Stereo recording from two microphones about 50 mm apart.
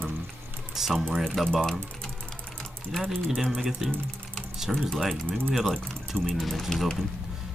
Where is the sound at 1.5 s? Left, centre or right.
Centre.